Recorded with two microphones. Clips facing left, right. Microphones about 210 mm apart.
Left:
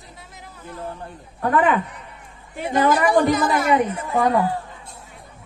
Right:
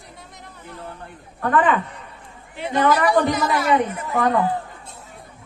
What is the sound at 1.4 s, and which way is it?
Speech, 10° left (ahead or behind).